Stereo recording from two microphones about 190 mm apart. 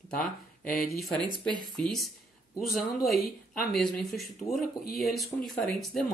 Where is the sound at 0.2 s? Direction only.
50° left (ahead or behind).